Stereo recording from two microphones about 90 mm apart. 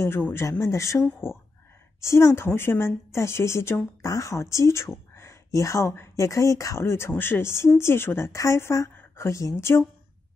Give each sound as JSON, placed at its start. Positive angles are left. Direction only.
{"t": 0.0, "sound": "a woman's voice", "side_deg": 30}